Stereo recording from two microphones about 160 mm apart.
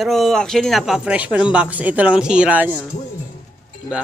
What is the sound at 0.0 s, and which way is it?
Speech, centre (ahead or behind).